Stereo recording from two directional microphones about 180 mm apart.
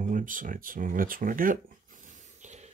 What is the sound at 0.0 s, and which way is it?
Speech, 45° right (ahead or behind).